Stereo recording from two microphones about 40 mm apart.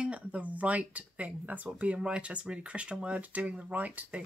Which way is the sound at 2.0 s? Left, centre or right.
Right.